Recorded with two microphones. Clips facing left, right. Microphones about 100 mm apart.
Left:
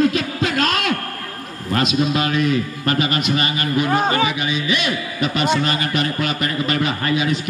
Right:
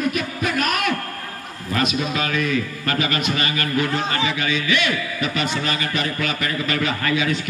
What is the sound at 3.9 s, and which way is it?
Speech, 55° left (ahead or behind).